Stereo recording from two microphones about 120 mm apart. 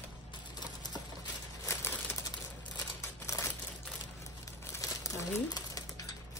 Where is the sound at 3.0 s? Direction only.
25° left (ahead or behind).